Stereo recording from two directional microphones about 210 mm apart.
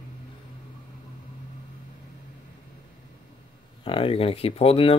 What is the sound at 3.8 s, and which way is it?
Speech, 25° left (ahead or behind).